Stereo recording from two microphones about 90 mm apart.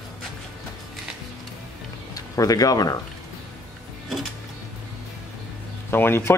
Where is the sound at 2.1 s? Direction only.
40° left (ahead or behind).